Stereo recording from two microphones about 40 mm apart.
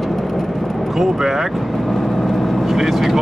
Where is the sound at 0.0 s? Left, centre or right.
Centre.